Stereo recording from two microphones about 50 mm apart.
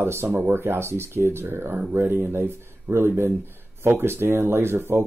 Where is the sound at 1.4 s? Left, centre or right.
Right.